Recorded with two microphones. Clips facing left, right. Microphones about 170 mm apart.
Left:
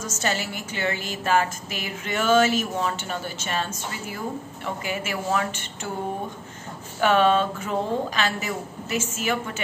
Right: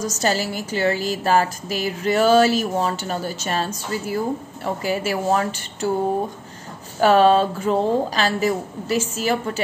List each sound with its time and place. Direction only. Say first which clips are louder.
0.0 s a woman's voice: right 6 dB; 35° right (ahead or behind)
7.0 s a woman's voice: right 5 dB; 35° right (ahead or behind)